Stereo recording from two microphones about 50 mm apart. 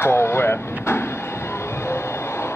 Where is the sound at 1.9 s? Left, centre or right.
Left.